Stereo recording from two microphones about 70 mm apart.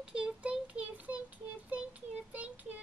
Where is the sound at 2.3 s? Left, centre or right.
Right.